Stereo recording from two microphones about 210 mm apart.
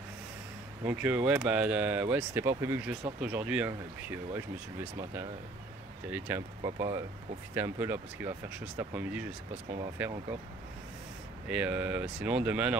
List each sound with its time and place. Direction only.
0.8 s speech: 5° right (ahead or behind)
6.0 s speech: 5° right (ahead or behind)
11.4 s speech: 5° right (ahead or behind)